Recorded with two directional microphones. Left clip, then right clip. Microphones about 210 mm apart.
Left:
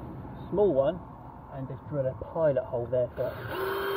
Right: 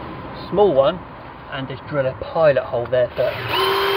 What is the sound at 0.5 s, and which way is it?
Speech, 25° right (ahead or behind).